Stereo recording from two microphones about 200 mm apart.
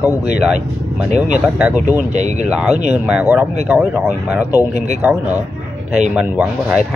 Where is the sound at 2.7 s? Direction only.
35° right (ahead or behind).